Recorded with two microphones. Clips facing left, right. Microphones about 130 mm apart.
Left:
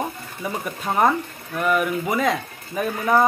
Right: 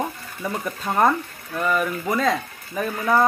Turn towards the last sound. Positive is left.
turn(degrees=10)  # may be behind; listen again after turning